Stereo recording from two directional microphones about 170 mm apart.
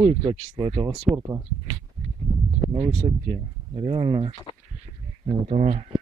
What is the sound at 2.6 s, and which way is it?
Speech, 30° right (ahead or behind).